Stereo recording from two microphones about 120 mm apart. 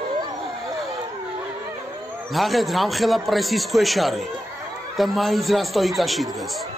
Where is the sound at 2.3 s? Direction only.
Centre (ahead or behind).